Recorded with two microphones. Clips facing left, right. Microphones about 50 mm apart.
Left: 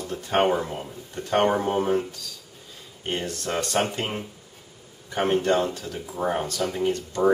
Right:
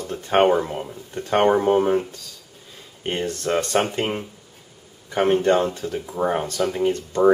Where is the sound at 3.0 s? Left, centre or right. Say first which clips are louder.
Right 4 dB; right.